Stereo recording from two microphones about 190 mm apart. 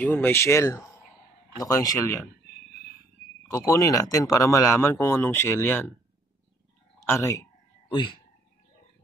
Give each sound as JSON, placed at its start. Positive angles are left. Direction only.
{"t": 0.0, "sound": "speech", "side_deg": 10}
{"t": 3.5, "sound": "speech", "side_deg": 15}
{"t": 7.0, "sound": "speech", "side_deg": 15}
{"t": 7.9, "sound": "speech", "side_deg": 25}